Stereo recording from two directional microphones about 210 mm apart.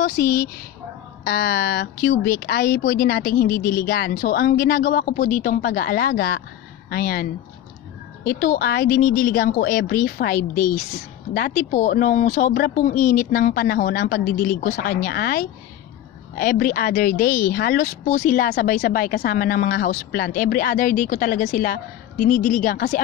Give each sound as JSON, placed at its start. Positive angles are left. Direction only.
{"t": 0.0, "sound": "speech", "side_deg": 50}